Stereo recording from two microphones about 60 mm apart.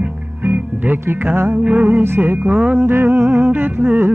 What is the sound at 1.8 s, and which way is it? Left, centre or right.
Music, right.